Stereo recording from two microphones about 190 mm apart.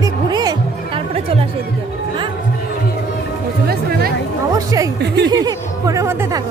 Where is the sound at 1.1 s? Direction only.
30° right (ahead or behind).